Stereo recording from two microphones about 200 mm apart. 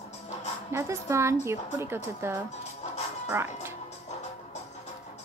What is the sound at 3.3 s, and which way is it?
Music, 10° right (ahead or behind).